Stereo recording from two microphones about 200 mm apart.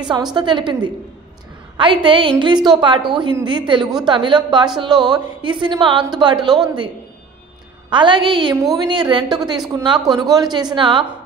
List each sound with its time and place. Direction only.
0.0 s a woman's voice: 20° right (ahead or behind)
7.9 s a woman's voice: 25° right (ahead or behind)